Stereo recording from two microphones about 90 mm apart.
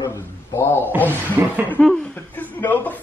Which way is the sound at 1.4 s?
25° right (ahead or behind).